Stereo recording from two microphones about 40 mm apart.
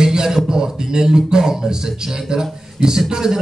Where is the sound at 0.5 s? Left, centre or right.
Centre.